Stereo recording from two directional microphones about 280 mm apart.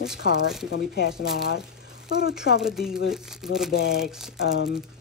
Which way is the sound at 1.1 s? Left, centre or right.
Centre.